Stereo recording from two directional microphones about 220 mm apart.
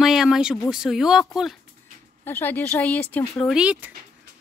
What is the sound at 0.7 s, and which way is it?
Speech, centre (ahead or behind).